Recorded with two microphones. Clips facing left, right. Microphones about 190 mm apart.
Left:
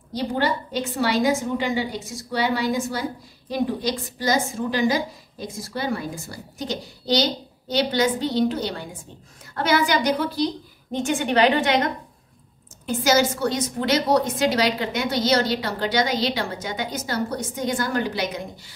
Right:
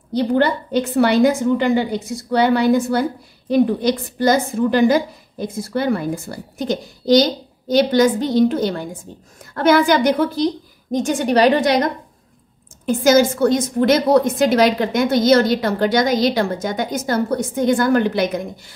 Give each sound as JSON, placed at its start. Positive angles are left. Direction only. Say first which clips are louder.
{"t": 0.1, "sound": "a woman's voice", "louder": "right 7 dB", "side_deg": -60}
{"t": 12.8, "sound": "a woman's voice", "louder": "right 6 dB", "side_deg": -50}